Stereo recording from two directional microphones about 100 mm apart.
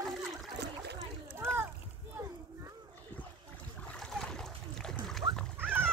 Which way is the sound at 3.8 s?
5° left (ahead or behind).